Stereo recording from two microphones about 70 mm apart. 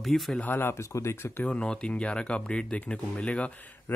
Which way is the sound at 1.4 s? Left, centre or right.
Centre.